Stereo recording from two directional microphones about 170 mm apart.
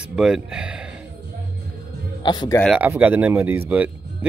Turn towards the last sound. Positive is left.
turn(degrees=-10)  # may be behind; listen again after turning